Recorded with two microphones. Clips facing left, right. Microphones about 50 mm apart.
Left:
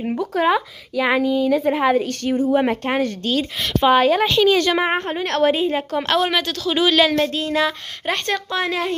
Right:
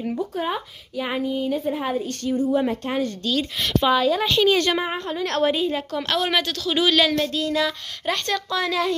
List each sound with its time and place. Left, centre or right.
0.2 s a woman's voice: left
2.4 s speech: left
4.4 s a woman's voice: left
4.9 s a woman's voice: left
5.5 s a woman's voice: left